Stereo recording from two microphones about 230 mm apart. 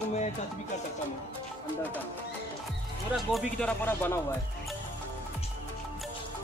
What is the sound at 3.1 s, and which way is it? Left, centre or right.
Speech, centre.